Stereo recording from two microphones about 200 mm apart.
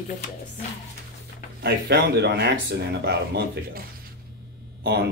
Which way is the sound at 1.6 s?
50° right (ahead or behind).